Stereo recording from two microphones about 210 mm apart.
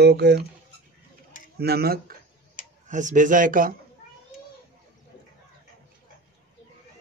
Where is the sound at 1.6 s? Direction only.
50° right (ahead or behind).